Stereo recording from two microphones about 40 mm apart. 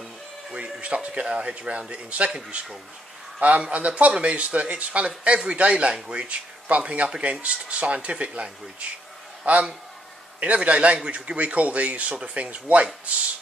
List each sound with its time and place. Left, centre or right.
0.5 s speech: right
3.3 s a man's voice: right